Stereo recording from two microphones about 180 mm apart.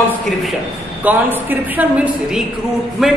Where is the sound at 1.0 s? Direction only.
10° right (ahead or behind).